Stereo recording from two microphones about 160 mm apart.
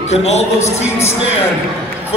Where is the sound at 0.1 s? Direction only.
40° left (ahead or behind).